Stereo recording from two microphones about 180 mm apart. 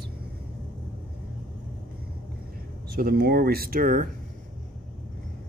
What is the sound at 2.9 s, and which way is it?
Speech, 55° right (ahead or behind).